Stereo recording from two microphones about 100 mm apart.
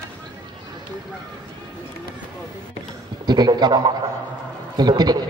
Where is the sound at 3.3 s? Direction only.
45° right (ahead or behind).